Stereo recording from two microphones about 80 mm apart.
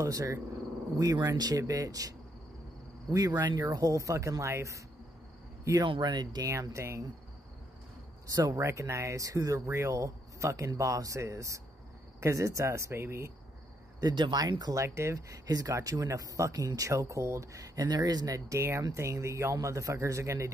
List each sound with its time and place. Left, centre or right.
0.0 s speech: right
5.9 s speech: right
6.5 s speech: right
8.5 s speech: right
13.9 s speech: right
14.7 s speech: right